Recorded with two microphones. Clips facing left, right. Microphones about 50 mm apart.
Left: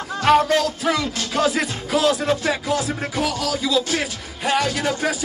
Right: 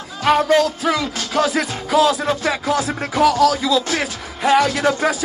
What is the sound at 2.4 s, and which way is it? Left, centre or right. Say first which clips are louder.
Speech: right 2 dB; right.